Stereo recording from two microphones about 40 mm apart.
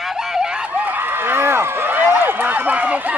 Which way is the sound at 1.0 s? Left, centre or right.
Right.